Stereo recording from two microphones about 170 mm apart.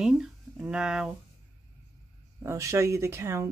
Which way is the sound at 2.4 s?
15° right (ahead or behind).